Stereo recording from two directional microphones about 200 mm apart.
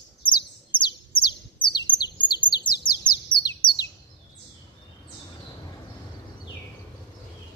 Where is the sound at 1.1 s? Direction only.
25° left (ahead or behind).